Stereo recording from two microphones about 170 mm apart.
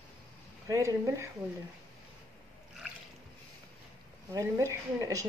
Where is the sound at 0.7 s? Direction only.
20° right (ahead or behind).